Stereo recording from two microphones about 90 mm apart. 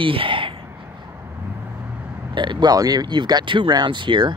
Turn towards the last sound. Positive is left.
turn(degrees=-60)  # may be behind; listen again after turning